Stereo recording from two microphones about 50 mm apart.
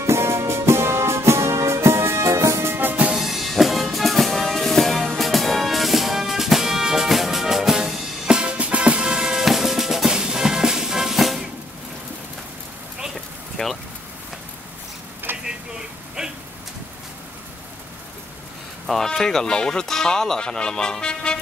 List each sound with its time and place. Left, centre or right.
0.0 s music: right
3.2 s music: centre
13.6 s vehicle: centre
15.3 s a sound: right
16.2 s a sound: centre
18.9 s speech: centre